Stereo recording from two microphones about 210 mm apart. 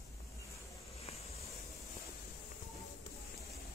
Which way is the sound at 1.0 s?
30° left (ahead or behind).